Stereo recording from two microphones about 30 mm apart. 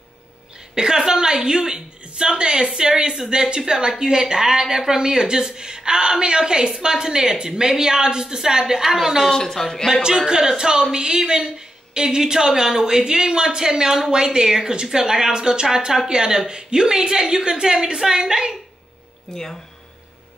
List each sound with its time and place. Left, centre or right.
0.7 s speech: right
9.3 s speech: centre
10.0 s speech: right
19.3 s speech: left